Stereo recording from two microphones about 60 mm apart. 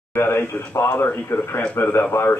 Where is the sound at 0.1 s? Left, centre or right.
Left.